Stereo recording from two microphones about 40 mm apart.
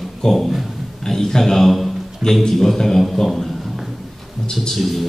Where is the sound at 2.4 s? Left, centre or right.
Centre.